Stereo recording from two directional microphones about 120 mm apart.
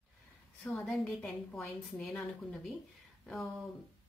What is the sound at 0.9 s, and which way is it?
A woman's voice, centre (ahead or behind).